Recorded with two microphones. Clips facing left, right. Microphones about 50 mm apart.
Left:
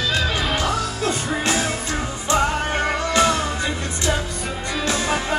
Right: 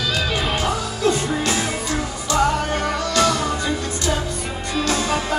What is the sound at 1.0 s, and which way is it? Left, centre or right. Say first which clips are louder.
Music: right 5 dB; left.